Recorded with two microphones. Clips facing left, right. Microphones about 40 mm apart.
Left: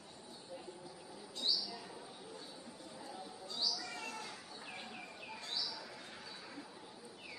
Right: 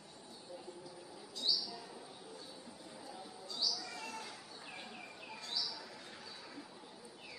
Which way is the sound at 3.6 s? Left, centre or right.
Left.